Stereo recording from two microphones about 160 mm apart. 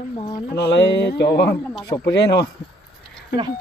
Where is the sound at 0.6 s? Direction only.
90° left.